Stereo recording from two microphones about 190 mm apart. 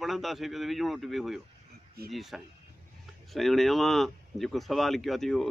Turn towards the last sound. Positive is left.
turn(degrees=0)  # may be behind; listen again after turning